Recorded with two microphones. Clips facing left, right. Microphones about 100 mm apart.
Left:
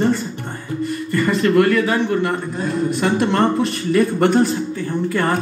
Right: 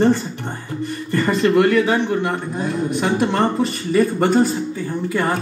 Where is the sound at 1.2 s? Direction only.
10° right (ahead or behind).